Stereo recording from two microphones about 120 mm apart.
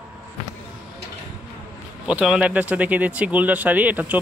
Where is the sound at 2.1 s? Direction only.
5° right (ahead or behind).